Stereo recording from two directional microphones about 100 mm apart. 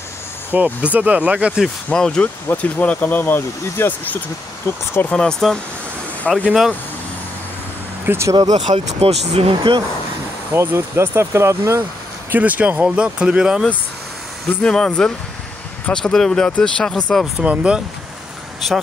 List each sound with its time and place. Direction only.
0.5 s speech: 15° right (ahead or behind)
1.9 s speech: 5° left (ahead or behind); by 4.8 s 25° left (ahead or behind)
5.1 s speech: 5° left (ahead or behind)
8.1 s speech: 25° right (ahead or behind)
8.4 s speech: 55° right (ahead or behind)
8.7 s speech: 75° right (ahead or behind)
9.6 s speech: 45° right (ahead or behind)
10.5 s speech: 25° right (ahead or behind)
12.3 s speech: 15° right (ahead or behind)
14.5 s speech: 10° left (ahead or behind)
17.4 s speech: 10° right (ahead or behind)